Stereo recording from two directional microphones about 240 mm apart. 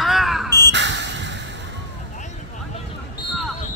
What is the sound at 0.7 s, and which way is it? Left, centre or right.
Crow, right.